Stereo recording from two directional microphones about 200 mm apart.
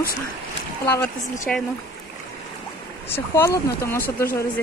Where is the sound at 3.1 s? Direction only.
15° left (ahead or behind).